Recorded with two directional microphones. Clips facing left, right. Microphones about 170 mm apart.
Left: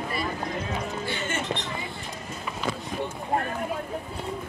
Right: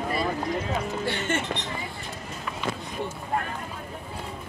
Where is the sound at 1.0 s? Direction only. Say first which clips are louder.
Right 3 dB; 70° right (ahead or behind).